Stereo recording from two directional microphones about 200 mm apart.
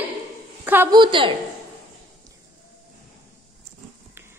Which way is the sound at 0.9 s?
25° right (ahead or behind).